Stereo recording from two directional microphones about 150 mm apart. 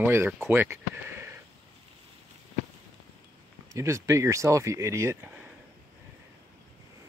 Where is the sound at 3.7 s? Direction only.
20° right (ahead or behind).